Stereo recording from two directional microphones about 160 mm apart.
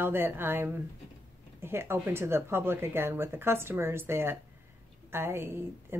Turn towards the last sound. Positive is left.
turn(degrees=-15)  # may be behind; listen again after turning